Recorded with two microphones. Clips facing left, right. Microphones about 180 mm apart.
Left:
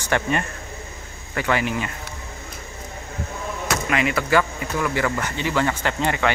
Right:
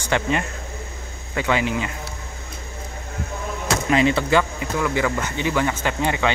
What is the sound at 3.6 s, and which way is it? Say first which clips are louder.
Speech: right 5 dB; 30° right (ahead or behind).